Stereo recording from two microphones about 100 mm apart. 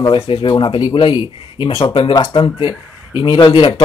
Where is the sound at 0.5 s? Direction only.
50° left (ahead or behind).